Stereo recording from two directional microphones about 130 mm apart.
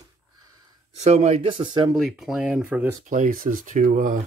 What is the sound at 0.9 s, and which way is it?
Speech, 60° right (ahead or behind).